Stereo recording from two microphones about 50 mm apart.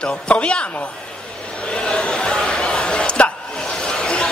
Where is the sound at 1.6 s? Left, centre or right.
Centre.